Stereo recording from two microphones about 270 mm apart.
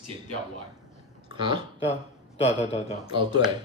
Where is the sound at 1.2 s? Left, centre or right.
Centre.